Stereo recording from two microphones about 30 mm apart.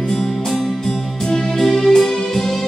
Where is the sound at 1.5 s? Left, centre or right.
Centre.